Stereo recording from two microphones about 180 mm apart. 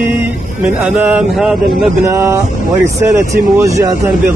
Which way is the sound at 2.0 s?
15° right (ahead or behind).